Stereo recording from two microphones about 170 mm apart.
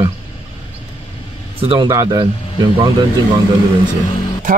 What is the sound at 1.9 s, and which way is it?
Speech, 20° right (ahead or behind).